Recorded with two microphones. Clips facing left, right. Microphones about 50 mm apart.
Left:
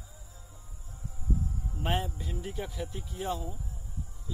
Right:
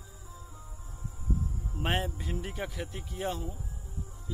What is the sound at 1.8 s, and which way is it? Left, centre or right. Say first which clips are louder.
Speech: right 1 dB; right.